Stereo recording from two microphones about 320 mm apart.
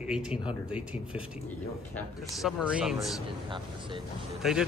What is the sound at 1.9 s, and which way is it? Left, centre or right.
Speech, centre.